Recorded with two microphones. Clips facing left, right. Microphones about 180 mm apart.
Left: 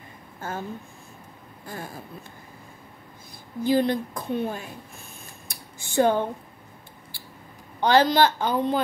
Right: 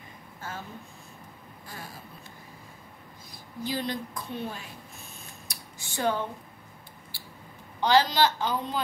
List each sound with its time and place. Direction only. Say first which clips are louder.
0.4 s a woman's voice: left 7 dB; 50° left (ahead or behind)
3.6 s a woman's voice: left 10 dB; 50° left (ahead or behind)
5.5 s a sound: left 7 dB; 50° left (ahead or behind)
7.8 s a woman's voice: left 4 dB; 55° left (ahead or behind)